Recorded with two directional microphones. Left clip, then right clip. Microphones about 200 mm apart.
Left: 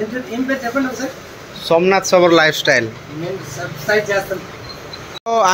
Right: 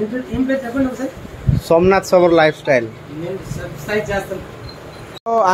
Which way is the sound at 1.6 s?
20° right (ahead or behind).